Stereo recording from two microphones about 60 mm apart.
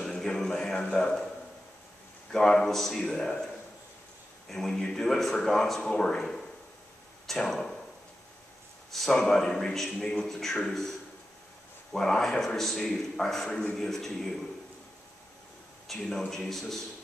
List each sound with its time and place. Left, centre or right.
0.0 s music: centre
0.7 s a man's voice: centre
2.3 s a man's voice: centre
4.5 s a man's voice: centre
9.1 s a man's voice: centre
15.9 s a man's voice: centre